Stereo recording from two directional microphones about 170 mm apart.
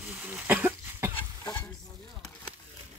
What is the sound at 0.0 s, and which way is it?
Cough, 10° right (ahead or behind).